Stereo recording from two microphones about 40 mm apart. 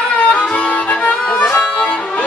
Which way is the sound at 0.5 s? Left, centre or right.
Left.